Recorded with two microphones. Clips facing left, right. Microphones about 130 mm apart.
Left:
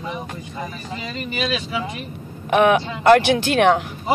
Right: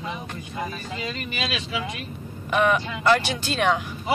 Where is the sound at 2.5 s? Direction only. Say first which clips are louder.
Left 6 dB; 60° left (ahead or behind).